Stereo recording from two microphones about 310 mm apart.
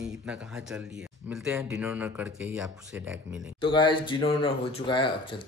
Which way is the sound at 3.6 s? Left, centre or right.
Centre.